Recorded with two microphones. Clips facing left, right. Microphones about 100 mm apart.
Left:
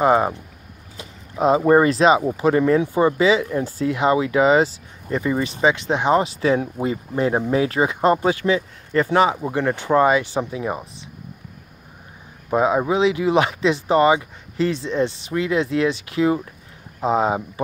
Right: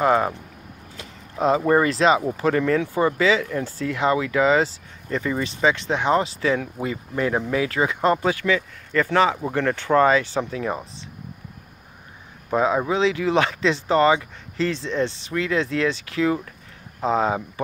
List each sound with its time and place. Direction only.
0.0 s speech: 20° left (ahead or behind)
12.4 s speech: 15° left (ahead or behind)